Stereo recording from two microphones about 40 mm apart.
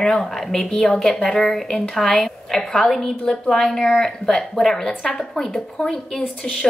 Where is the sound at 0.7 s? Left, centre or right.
Centre.